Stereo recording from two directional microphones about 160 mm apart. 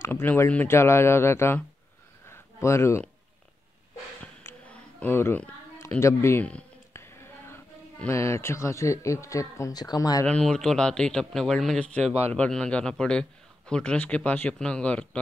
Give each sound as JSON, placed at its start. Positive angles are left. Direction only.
{"t": 0.0, "sound": "a man's voice", "side_deg": 15}
{"t": 2.2, "sound": "a sound", "side_deg": 15}
{"t": 4.4, "sound": "a sound", "side_deg": 15}
{"t": 5.9, "sound": "speech", "side_deg": 15}
{"t": 10.2, "sound": "speech", "side_deg": 5}
{"t": 12.0, "sound": "a man's voice", "side_deg": -40}
{"t": 12.4, "sound": "a man's voice", "side_deg": 5}